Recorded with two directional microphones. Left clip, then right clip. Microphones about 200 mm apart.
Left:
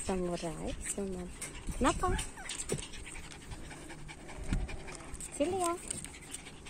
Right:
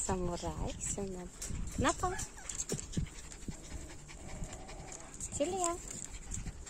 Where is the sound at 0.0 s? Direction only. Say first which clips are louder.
Left 2 dB; 5° right (ahead or behind).